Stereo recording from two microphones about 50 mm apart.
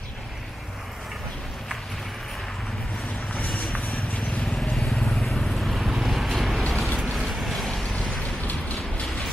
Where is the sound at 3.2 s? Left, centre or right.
Left.